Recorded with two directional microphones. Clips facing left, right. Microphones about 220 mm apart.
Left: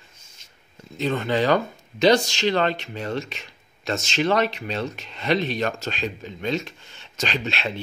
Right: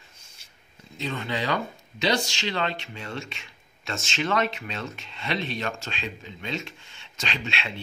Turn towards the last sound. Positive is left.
turn(degrees=40)  # may be behind; listen again after turning